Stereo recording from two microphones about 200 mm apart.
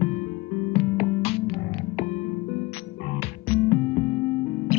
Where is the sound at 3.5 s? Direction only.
35° left (ahead or behind).